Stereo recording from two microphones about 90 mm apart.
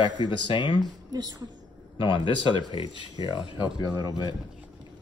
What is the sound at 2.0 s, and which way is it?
Speech, 60° left (ahead or behind).